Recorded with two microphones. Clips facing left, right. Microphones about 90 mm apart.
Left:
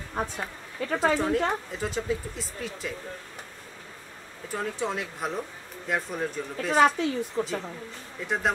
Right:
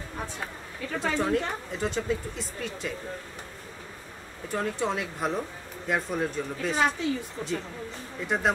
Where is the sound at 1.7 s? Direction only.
Centre (ahead or behind).